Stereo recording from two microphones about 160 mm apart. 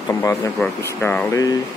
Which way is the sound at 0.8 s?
15° left (ahead or behind).